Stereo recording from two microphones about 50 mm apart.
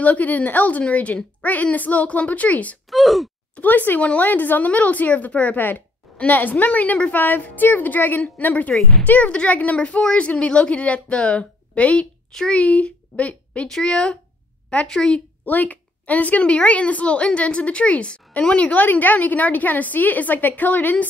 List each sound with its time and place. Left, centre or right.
0.0 s a woman's voice: left
2.9 s speech: centre
3.6 s a woman's voice: left
13.7 s speech: centre
15.4 s a woman's voice: left